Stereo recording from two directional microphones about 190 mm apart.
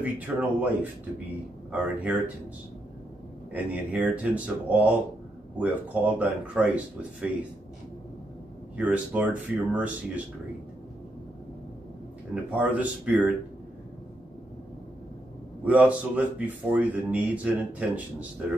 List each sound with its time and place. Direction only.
0.0 s speech: 10° right (ahead or behind)
3.5 s speech: 10° right (ahead or behind)
8.7 s speech: 5° right (ahead or behind)
12.4 s speech: 10° right (ahead or behind)
15.6 s speech: 10° right (ahead or behind)